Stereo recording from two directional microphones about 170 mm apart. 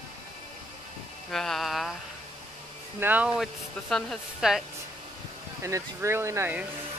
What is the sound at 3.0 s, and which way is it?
A woman's voice, 10° right (ahead or behind).